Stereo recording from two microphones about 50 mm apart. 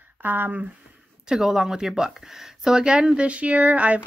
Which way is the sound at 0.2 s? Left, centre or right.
Right.